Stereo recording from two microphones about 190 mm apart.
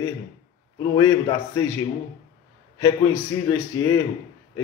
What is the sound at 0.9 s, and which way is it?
Speech, 20° left (ahead or behind).